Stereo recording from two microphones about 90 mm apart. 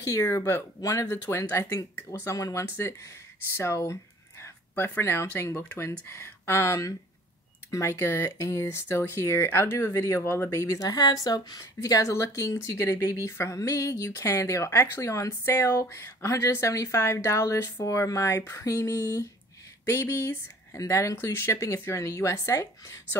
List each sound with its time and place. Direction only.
0.0 s speech: 35° left (ahead or behind)
1.0 s speech: 25° left (ahead or behind); by 19.2 s 40° left (ahead or behind)
19.9 s speech: 30° left (ahead or behind)